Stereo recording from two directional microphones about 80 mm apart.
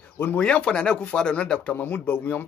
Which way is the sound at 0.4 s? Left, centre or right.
Centre.